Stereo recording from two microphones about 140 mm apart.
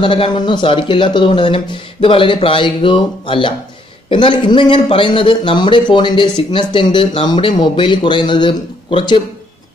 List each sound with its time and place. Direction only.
0.0 s speech: 40° left (ahead or behind)